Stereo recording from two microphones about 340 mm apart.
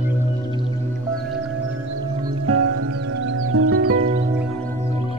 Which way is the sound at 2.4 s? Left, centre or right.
Right.